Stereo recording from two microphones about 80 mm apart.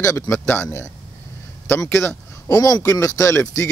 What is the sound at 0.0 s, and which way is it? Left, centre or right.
A man's voice, left.